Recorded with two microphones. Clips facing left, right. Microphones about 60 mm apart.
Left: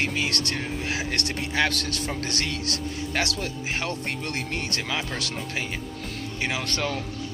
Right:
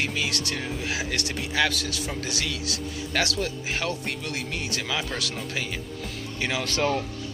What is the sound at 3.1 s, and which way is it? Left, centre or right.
Speech, left.